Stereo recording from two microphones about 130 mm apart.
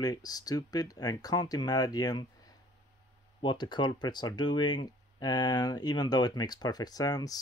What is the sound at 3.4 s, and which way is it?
Speech, 35° left (ahead or behind).